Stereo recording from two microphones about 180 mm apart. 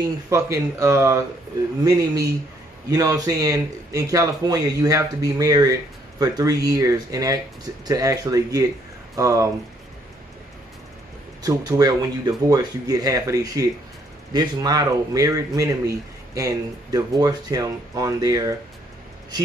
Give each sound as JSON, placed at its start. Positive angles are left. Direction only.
{"t": 0.3, "sound": "speech", "side_deg": -15}
{"t": 11.4, "sound": "speech", "side_deg": -20}